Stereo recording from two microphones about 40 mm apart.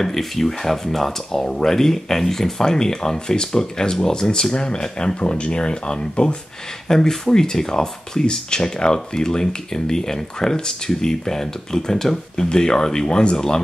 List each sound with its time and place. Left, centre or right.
0.0 s speech: centre; by 13.4 s left